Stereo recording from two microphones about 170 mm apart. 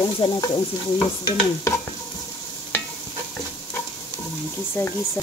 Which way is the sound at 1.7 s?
15° left (ahead or behind).